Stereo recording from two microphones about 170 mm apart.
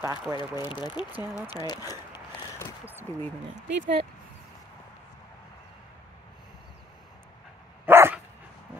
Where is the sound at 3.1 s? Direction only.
20° left (ahead or behind).